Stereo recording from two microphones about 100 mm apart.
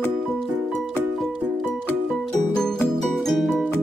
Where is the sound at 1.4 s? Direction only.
15° right (ahead or behind).